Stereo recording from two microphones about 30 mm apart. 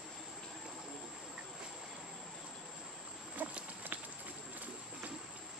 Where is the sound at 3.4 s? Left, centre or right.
Right.